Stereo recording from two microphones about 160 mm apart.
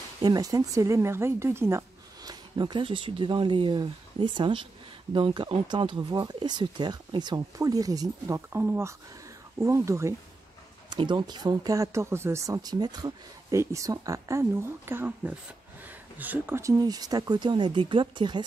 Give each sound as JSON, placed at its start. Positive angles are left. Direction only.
{"t": 0.2, "sound": "speech", "side_deg": -25}
{"t": 2.5, "sound": "speech", "side_deg": -30}
{"t": 10.9, "sound": "speech", "side_deg": -30}